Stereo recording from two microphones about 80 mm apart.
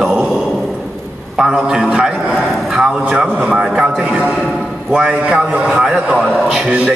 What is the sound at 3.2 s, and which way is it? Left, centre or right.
A man's voice, centre.